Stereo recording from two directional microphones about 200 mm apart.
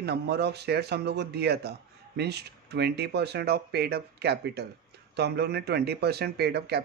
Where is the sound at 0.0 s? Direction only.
55° right (ahead or behind).